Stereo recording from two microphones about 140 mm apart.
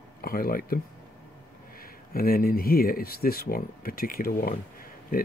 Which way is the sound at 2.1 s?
90° left.